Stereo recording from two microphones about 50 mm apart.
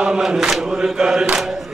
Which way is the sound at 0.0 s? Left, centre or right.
Centre.